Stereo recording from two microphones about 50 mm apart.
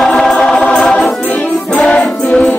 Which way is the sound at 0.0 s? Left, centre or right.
Centre.